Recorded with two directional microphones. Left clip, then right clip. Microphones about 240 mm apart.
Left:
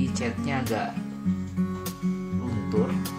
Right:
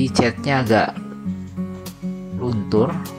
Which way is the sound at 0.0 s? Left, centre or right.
Right.